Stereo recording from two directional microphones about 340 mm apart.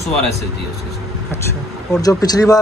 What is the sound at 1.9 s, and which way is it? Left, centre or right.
Speech, centre.